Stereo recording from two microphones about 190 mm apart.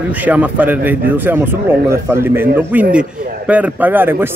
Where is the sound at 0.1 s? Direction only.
10° right (ahead or behind).